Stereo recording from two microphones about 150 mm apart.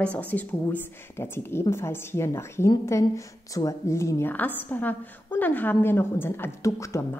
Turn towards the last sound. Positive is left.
turn(degrees=15)  # may be behind; listen again after turning